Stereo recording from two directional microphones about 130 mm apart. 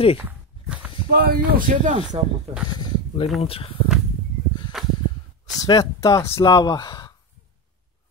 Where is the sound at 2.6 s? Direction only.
35° left (ahead or behind).